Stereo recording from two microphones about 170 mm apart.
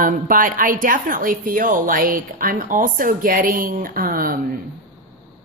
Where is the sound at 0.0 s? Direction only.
50° right (ahead or behind).